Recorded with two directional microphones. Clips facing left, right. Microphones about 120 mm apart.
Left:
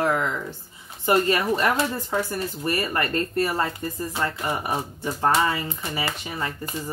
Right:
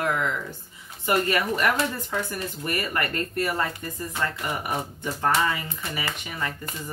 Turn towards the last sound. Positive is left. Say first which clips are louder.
# left 2 dB
turn(degrees=30)  # may be behind; listen again after turning